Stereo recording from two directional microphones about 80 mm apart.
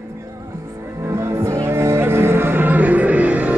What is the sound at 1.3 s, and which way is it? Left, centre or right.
Music, right.